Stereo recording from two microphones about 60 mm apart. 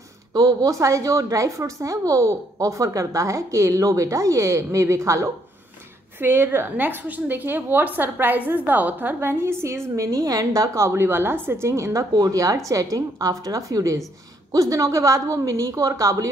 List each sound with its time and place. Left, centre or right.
0.3 s a woman's voice: right
6.1 s a woman's voice: right
12.9 s a woman's voice: right
14.5 s a woman's voice: right